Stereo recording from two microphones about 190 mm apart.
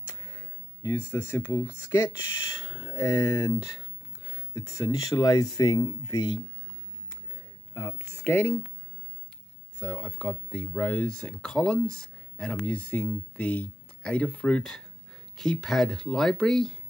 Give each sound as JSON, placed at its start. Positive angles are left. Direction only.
{"t": 0.1, "sound": "a sound", "side_deg": 15}
{"t": 1.1, "sound": "speech", "side_deg": 10}
{"t": 2.5, "sound": "a sound", "side_deg": 25}
{"t": 2.9, "sound": "speech", "side_deg": 20}
{"t": 8.3, "sound": "speech", "side_deg": 10}
{"t": 9.8, "sound": "speech", "side_deg": 5}